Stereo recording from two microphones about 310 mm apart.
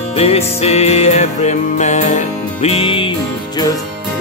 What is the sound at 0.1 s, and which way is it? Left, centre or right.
Music, centre.